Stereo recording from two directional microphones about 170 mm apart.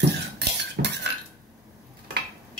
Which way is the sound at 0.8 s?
60° right (ahead or behind).